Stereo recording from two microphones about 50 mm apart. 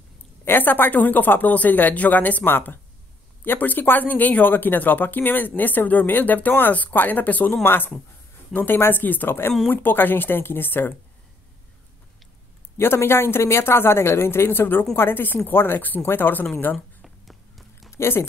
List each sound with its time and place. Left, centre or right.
0.5 s speech: left
7.6 s speech: left
12.7 s speech: left
16.7 s a sound: centre
17.9 s speech: left